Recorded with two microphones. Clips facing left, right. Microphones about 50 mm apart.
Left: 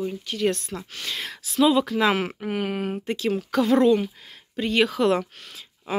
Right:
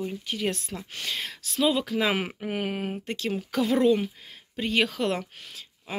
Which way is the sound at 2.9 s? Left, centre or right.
Centre.